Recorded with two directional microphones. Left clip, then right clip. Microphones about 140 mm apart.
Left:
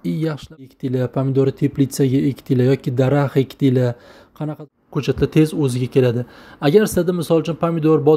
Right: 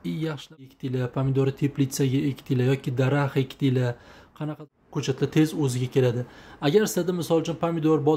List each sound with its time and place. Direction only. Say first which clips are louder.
0.0 s speech: left 7 dB; 40° left (ahead or behind)